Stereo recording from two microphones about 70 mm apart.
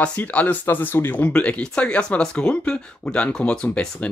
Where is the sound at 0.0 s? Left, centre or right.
Left.